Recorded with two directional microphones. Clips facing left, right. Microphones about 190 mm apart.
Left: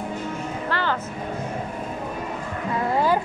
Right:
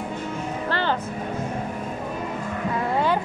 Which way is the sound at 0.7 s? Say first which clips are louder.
Right 1 dB; 30° right (ahead or behind).